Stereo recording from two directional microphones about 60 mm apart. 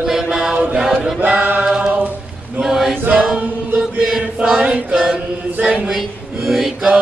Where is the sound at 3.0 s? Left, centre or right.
Right.